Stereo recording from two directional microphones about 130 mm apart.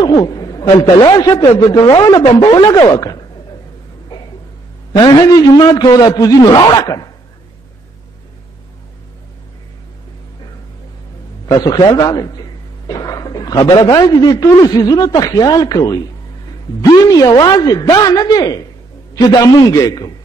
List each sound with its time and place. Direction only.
0.0 s a sound: 30° left (ahead or behind)
0.8 s a man's voice: 35° left (ahead or behind)
5.0 s a man's voice: 35° left (ahead or behind)
11.4 s a man's voice: 30° left (ahead or behind)